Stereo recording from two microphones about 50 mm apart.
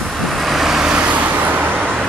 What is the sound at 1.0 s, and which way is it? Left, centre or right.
Vehicle, right.